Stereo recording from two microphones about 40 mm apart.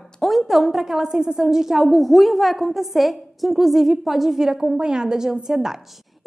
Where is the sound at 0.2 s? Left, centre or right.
Centre.